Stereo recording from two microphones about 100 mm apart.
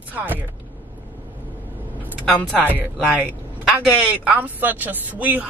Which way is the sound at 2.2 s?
5° left (ahead or behind).